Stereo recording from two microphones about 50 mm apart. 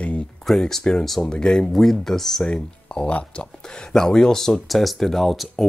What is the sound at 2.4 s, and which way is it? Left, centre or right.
Speech, centre.